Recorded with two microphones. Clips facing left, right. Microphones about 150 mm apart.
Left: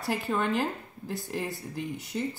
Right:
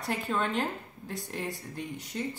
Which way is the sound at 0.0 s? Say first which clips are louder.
Left 2 dB; 5° left (ahead or behind).